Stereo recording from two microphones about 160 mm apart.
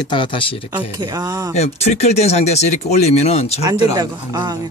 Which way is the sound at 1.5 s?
40° left (ahead or behind).